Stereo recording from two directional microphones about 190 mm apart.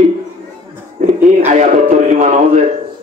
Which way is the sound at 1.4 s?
35° right (ahead or behind).